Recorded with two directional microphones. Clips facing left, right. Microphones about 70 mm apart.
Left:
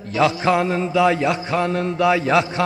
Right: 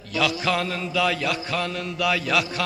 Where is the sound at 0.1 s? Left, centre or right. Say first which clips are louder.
Left 6 dB; left.